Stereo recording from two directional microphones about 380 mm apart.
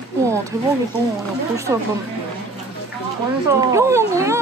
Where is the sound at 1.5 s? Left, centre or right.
Centre.